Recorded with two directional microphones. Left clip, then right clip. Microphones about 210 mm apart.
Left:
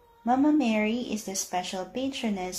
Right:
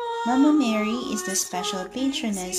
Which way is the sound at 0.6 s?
30° right (ahead or behind).